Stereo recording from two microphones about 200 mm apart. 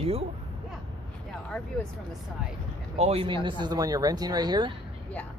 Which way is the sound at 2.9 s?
30° right (ahead or behind).